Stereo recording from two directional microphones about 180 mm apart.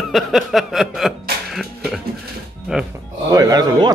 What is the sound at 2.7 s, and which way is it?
Music, 5° right (ahead or behind).